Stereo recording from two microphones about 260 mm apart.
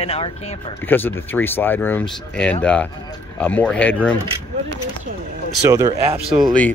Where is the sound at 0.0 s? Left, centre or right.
Left.